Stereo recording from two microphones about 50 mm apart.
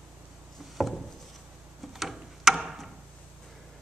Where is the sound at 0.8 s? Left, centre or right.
Centre.